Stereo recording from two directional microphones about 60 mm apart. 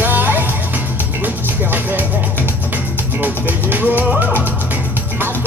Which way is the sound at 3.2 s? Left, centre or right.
Right.